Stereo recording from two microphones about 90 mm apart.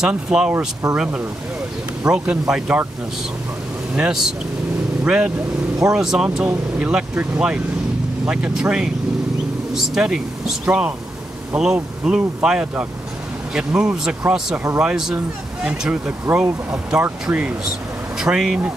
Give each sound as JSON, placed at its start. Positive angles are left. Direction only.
{"t": 0.0, "sound": "speech", "side_deg": -10}
{"t": 3.9, "sound": "speech", "side_deg": -5}
{"t": 17.6, "sound": "speech", "side_deg": -5}